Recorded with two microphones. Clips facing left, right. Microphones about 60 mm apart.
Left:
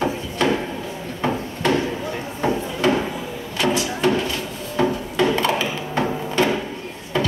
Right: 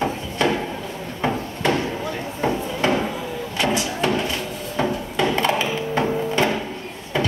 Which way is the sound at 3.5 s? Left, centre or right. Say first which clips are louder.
Left 1 dB; right.